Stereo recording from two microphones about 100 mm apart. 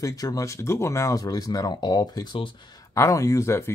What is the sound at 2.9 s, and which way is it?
Speech, 30° left (ahead or behind).